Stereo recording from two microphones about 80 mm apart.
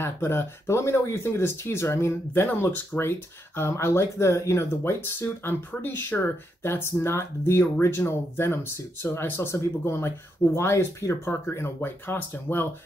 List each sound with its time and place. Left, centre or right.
0.0 s speech: left
9.0 s speech: left